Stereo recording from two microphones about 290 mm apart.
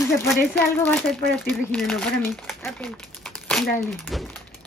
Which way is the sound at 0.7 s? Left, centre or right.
Centre.